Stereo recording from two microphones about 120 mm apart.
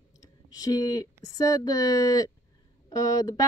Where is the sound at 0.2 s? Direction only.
30° left (ahead or behind).